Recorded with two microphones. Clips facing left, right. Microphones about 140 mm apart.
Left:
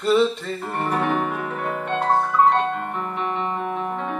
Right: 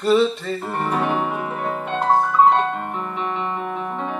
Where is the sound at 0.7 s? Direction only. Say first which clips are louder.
Even; 15° right (ahead or behind).